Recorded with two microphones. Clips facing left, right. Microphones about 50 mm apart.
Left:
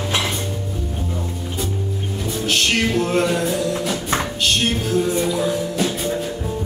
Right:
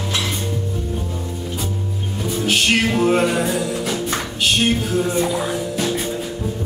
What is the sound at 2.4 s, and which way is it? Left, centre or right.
Music, centre.